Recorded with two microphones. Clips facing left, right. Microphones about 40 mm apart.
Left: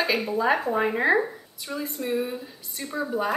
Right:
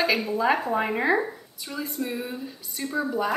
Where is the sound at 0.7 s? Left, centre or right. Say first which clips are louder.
Left 1 dB; centre.